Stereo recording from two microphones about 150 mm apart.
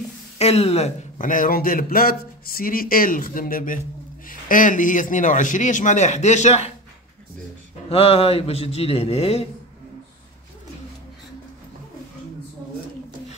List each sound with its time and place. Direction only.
0.4 s a man's voice: 45° left (ahead or behind)
7.9 s a man's voice: 40° left (ahead or behind)